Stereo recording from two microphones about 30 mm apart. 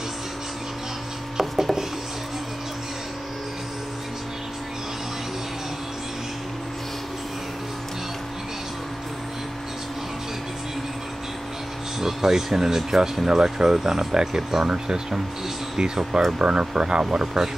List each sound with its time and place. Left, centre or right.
1.4 s a sound: centre
12.0 s speech: centre
16.3 s speech: right